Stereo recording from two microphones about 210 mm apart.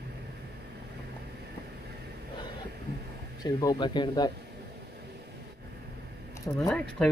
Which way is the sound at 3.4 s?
20° left (ahead or behind).